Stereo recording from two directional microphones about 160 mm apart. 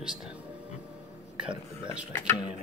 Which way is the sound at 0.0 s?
5° right (ahead or behind).